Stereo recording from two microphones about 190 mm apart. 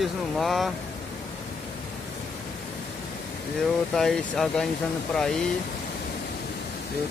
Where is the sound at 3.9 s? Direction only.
Centre (ahead or behind).